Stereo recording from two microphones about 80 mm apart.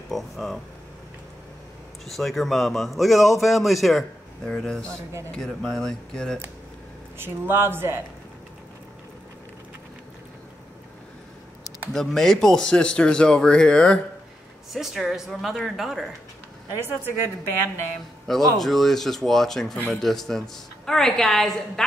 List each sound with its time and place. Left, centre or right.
0.1 s a man's voice: centre
2.0 s a man's voice: centre
7.2 s speech: right
11.9 s speech: centre
14.7 s a man's voice: centre
18.2 s a man's voice: centre